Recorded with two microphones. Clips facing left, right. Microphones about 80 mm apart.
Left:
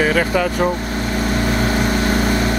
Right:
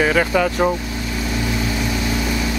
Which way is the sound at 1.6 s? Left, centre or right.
Left.